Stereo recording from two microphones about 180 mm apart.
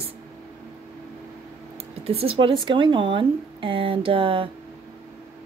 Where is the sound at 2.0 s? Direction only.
30° right (ahead or behind).